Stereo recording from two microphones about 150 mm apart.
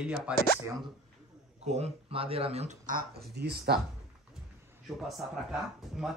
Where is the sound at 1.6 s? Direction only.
45° right (ahead or behind).